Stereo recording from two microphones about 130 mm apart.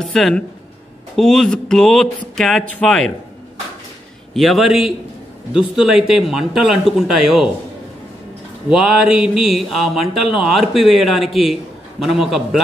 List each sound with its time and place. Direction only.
0.0 s speech: 5° left (ahead or behind)
4.3 s speech: centre (ahead or behind)
8.6 s speech: 5° right (ahead or behind)